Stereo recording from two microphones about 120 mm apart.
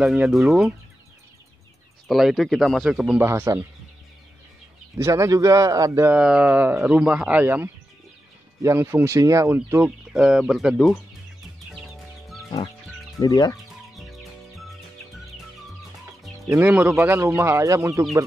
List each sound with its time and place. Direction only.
0.0 s speech: 5° right (ahead or behind)
2.0 s speech: centre (ahead or behind)
3.2 s a man's voice: 20° right (ahead or behind)
4.9 s a man's voice: 25° right (ahead or behind)
6.1 s a man's voice: 10° right (ahead or behind); by 9.6 s 25° right (ahead or behind)
9.8 s speech: 5° right (ahead or behind)
13.2 s speech: 30° left (ahead or behind)
13.9 s music: centre (ahead or behind)
16.6 s speech: 10° right (ahead or behind)
17.2 s a man's voice: 25° right (ahead or behind)